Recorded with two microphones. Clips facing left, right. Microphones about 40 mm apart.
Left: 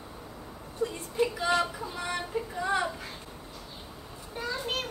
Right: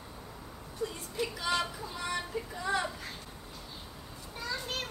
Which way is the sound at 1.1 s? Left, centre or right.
Left.